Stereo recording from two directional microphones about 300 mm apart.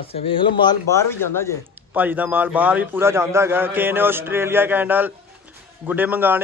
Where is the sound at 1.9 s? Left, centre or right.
Centre.